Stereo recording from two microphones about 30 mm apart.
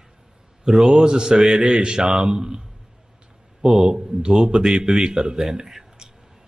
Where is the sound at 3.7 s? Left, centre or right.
Centre.